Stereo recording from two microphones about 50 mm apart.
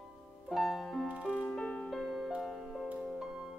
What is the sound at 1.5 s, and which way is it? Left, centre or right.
Music, centre.